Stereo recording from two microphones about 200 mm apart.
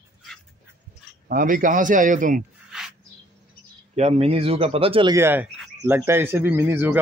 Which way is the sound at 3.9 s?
30° right (ahead or behind).